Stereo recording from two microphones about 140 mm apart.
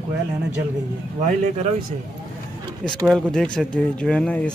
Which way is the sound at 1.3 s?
55° right (ahead or behind).